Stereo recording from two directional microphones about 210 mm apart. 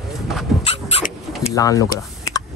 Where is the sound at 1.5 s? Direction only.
15° left (ahead or behind).